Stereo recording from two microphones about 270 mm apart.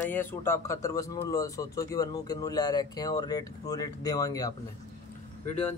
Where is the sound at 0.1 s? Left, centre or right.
Centre.